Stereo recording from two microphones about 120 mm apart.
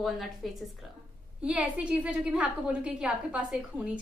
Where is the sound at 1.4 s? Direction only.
10° right (ahead or behind).